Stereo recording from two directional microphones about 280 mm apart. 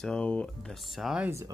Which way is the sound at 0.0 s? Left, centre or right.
Centre.